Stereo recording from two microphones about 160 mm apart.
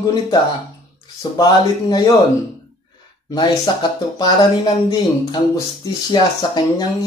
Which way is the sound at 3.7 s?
25° left (ahead or behind).